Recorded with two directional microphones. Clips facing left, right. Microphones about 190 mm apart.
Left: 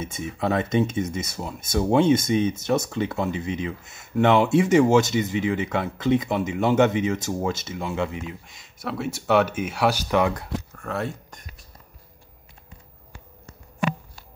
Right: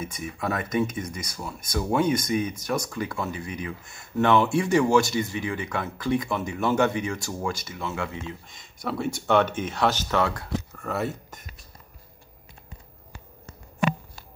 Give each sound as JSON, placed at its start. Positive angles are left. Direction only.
{"t": 0.0, "sound": "speech", "side_deg": 25}
{"t": 8.5, "sound": "speech", "side_deg": 5}
{"t": 10.8, "sound": "speech", "side_deg": -5}